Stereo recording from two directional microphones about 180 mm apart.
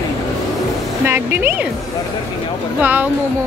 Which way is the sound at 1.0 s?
10° right (ahead or behind).